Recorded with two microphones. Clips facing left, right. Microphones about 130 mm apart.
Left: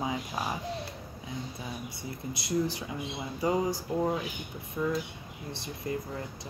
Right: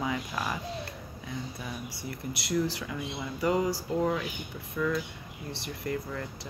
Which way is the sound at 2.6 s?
20° left (ahead or behind).